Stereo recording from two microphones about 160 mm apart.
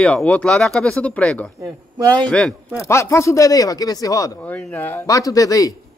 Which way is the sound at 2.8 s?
15° left (ahead or behind).